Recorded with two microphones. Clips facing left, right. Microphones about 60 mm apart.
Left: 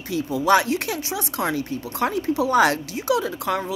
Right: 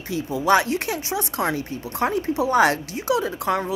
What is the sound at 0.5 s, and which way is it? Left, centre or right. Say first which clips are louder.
Speech: even; right.